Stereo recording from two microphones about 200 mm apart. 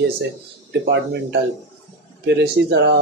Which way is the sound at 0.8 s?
60° right (ahead or behind).